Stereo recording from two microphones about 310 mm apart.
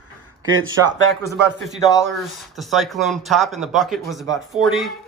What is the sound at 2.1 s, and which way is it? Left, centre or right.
Speech, centre.